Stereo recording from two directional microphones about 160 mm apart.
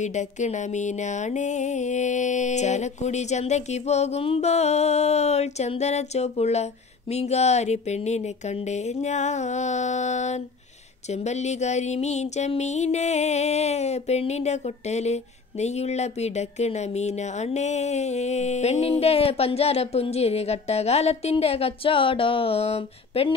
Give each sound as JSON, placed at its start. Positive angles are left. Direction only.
{"t": 0.0, "sound": "speech", "side_deg": 50}